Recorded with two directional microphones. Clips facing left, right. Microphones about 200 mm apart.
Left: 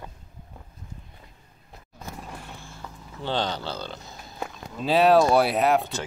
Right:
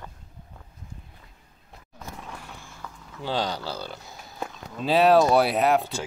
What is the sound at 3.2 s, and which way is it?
Speech, 5° right (ahead or behind).